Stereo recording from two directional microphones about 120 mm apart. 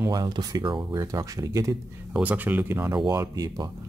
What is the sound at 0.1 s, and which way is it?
Speech, 35° right (ahead or behind).